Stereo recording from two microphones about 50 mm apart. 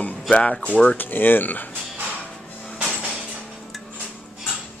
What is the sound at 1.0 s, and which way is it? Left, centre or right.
Speech, left.